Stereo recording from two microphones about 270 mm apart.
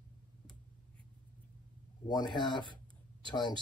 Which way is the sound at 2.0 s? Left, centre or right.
Centre.